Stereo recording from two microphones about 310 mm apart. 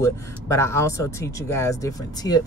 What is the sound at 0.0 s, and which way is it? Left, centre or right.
Speech, centre.